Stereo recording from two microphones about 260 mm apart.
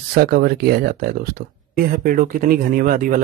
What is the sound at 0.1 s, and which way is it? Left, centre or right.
Speech, right.